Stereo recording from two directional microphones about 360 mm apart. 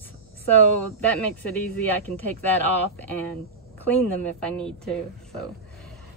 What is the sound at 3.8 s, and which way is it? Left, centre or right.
Speech, centre.